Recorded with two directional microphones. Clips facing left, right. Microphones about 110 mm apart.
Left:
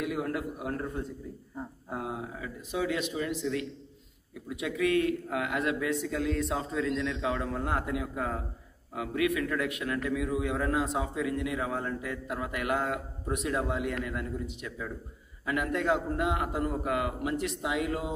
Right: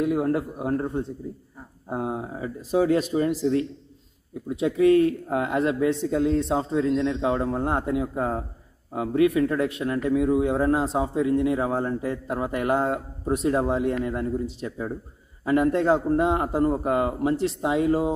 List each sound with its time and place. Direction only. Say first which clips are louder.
0.0 s a man's voice: right 9 dB; 30° right (ahead or behind)